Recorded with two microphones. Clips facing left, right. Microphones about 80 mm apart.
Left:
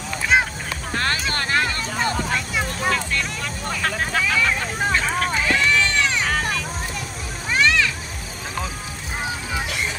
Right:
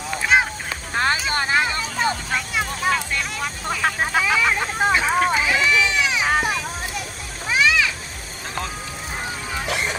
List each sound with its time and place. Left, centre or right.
0.3 s a sound: centre
0.9 s boat: centre
1.3 s vehicle: centre
2.3 s vehicle: centre
2.9 s vehicle: centre
6.3 s a sound: centre
7.4 s children playing: centre